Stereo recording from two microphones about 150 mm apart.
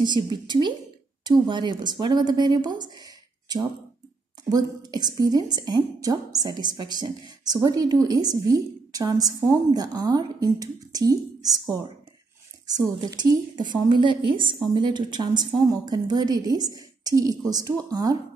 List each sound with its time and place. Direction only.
0.0 s a woman's voice: 30° right (ahead or behind)
12.6 s a woman's voice: 25° right (ahead or behind)